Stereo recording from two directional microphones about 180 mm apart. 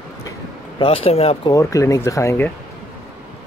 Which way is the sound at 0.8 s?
30° left (ahead or behind).